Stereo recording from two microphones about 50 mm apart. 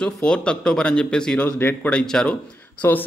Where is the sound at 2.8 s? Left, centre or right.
Left.